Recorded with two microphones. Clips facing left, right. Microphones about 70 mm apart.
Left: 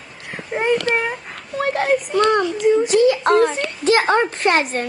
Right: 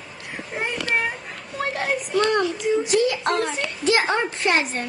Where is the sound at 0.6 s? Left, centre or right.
Left.